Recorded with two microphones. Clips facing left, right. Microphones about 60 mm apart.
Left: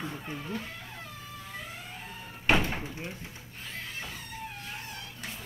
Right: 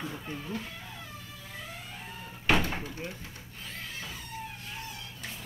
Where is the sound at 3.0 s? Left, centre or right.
Centre.